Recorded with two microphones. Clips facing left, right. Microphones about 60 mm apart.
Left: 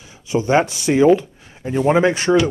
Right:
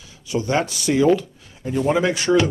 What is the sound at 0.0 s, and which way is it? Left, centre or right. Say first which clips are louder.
Speech: left 4 dB; left.